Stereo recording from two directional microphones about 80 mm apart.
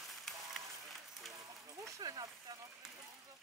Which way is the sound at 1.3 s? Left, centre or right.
Right.